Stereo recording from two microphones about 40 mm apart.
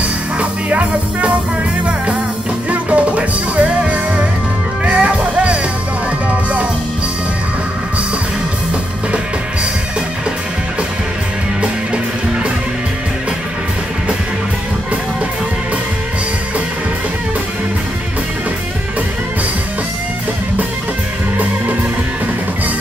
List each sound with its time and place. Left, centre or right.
0.4 s music: right
2.7 s music: right